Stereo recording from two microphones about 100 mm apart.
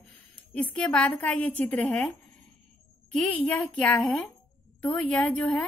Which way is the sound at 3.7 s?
15° left (ahead or behind).